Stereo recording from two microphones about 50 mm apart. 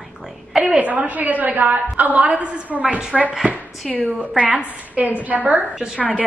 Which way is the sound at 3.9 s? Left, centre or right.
Right.